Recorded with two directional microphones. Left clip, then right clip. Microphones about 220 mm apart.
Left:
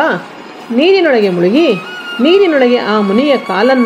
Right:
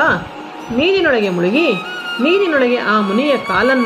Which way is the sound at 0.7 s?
15° left (ahead or behind).